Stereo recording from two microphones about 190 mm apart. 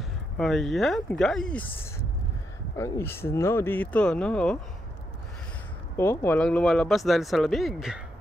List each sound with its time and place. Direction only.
0.4 s speech: centre (ahead or behind)
2.8 s speech: 10° left (ahead or behind)
5.9 s speech: 10° left (ahead or behind)